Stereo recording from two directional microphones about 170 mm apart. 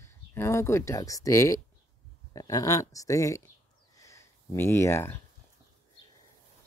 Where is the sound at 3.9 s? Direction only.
20° left (ahead or behind).